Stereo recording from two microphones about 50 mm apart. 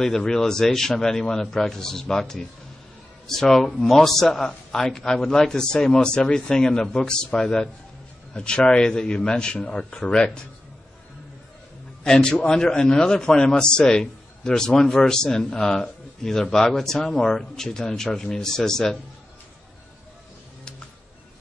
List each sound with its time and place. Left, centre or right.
0.0 s a man's voice: centre
12.0 s a man's voice: centre